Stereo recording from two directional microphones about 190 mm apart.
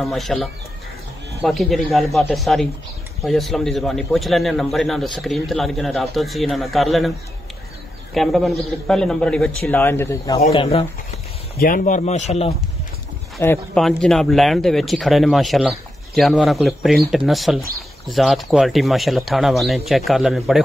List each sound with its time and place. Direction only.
0.0 s a man's voice: centre (ahead or behind)
8.1 s a man's voice: centre (ahead or behind); by 10.4 s 15° left (ahead or behind)
10.4 s speech: 30° left (ahead or behind)
11.5 s speech: 50° left (ahead or behind)
13.4 s a man's voice: 10° left (ahead or behind)